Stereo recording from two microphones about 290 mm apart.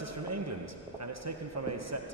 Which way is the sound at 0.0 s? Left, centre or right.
Right.